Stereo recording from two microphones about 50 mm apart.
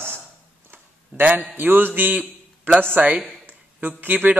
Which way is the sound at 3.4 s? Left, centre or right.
Right.